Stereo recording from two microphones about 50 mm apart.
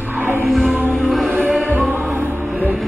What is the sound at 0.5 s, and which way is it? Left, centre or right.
Music, centre.